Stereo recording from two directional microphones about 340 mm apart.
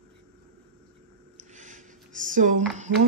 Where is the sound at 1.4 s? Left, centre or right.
Right.